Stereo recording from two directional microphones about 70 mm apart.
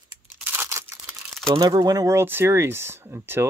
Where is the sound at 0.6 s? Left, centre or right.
Right.